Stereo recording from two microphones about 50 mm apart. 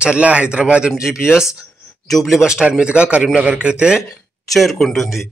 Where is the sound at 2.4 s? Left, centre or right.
Centre.